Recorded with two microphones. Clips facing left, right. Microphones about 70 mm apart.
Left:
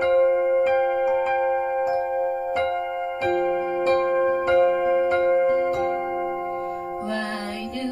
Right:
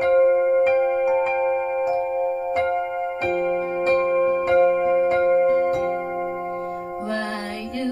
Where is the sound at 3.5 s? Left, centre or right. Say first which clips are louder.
Even; right.